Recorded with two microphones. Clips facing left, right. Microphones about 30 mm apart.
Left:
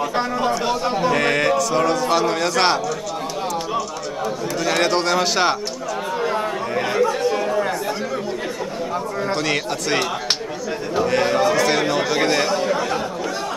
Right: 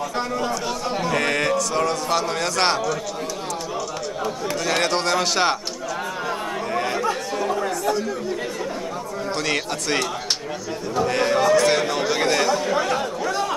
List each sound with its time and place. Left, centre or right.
0.0 s a man's voice: left
1.0 s speech: centre
4.6 s a man's voice: centre
6.7 s chatter: centre
9.3 s speech: centre
11.1 s a man's voice: centre
12.7 s speech: centre